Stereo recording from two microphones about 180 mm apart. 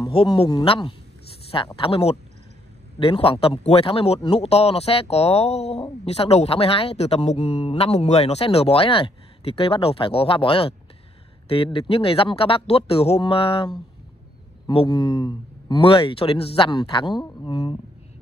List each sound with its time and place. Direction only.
0.1 s speech: 30° left (ahead or behind)